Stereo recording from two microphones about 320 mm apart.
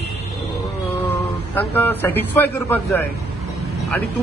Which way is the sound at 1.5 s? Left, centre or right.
Centre.